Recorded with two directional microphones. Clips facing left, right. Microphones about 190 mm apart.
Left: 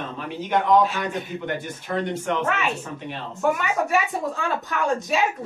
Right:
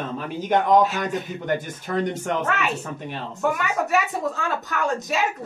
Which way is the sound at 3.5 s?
Centre (ahead or behind).